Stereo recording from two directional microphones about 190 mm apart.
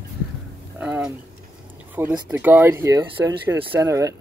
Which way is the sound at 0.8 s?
5° right (ahead or behind).